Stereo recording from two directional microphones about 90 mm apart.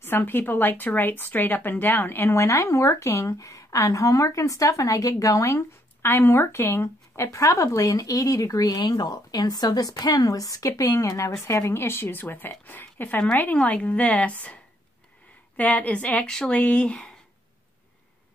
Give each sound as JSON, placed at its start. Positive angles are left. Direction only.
{"t": 0.0, "sound": "a woman's voice", "side_deg": 20}